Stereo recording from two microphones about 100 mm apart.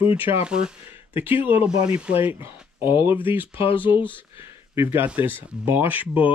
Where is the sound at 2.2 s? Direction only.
20° right (ahead or behind).